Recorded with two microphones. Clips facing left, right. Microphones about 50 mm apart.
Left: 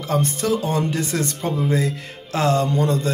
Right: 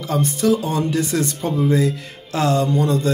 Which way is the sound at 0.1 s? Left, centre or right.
Left.